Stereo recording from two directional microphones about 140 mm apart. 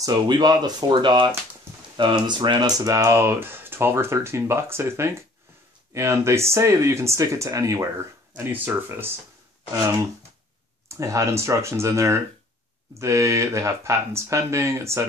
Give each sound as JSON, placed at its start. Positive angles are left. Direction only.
{"t": 0.0, "sound": "speech", "side_deg": -30}
{"t": 8.5, "sound": "speech", "side_deg": -10}
{"t": 10.9, "sound": "speech", "side_deg": -20}